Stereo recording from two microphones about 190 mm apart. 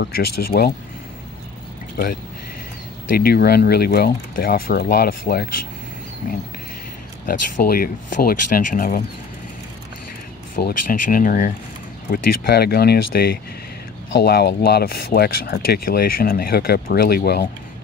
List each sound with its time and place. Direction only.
0.0 s speech: 55° left (ahead or behind)
3.2 s speech: 55° left (ahead or behind)
7.2 s speech: 50° left (ahead or behind)
10.5 s speech: 50° left (ahead or behind)
12.1 s speech: 55° left (ahead or behind)